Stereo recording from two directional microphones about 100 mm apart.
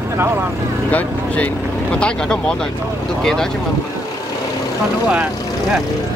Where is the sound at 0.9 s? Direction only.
15° left (ahead or behind).